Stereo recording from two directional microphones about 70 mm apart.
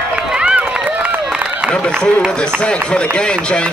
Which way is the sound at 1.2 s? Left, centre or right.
Centre.